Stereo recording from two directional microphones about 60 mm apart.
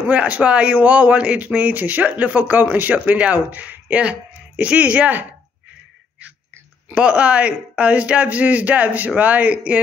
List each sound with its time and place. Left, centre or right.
0.1 s speech: centre
6.9 s speech: centre